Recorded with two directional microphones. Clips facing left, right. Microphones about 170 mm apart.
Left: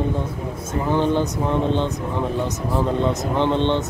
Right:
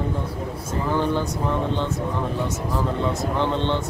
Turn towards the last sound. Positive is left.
turn(degrees=20)  # may be behind; listen again after turning